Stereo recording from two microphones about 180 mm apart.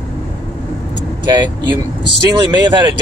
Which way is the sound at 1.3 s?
25° right (ahead or behind).